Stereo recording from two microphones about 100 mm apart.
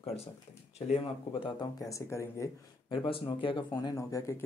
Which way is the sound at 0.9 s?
60° left (ahead or behind).